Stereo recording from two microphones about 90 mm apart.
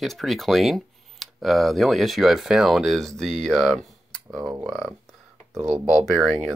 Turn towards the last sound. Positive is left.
turn(degrees=0)  # may be behind; listen again after turning